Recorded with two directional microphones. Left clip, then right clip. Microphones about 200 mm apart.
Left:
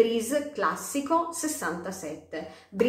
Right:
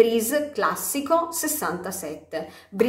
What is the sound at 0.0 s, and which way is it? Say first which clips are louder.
A woman's voice: right 5 dB; 25° right (ahead or behind).